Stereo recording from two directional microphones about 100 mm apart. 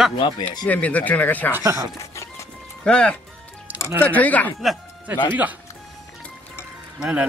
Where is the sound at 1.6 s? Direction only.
35° right (ahead or behind).